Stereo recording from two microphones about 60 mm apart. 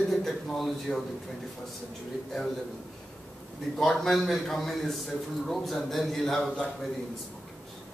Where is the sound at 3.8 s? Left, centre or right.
Centre.